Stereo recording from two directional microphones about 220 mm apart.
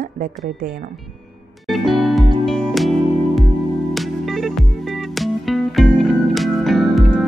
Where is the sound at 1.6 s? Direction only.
Centre (ahead or behind).